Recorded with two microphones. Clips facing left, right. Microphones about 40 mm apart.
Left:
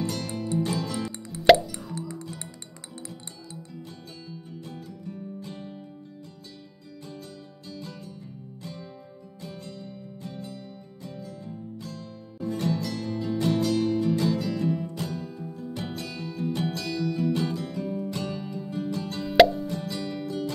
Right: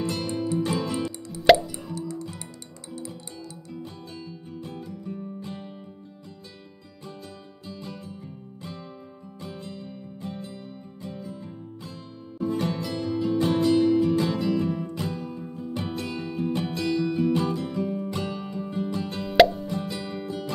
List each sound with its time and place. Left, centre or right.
0.0 s music: right
1.4 s plop: centre
4.5 s music: right
7.6 s music: right
9.4 s music: right
19.2 s plop: centre
19.7 s plop: right